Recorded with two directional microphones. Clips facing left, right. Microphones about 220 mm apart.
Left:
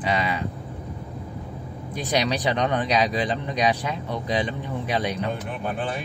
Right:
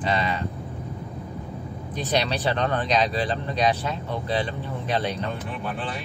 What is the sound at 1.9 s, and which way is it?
Speech, 10° left (ahead or behind).